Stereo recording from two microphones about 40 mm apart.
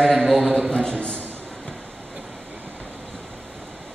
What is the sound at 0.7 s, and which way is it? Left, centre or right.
Speech, left.